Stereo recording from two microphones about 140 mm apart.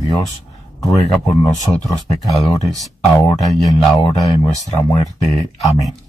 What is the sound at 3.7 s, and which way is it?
Speech, 30° left (ahead or behind).